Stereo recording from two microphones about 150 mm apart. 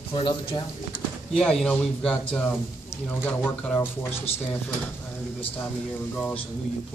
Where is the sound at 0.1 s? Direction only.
35° left (ahead or behind).